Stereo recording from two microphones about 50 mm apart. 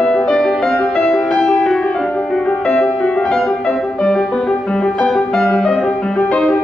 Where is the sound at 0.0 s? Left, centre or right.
Centre.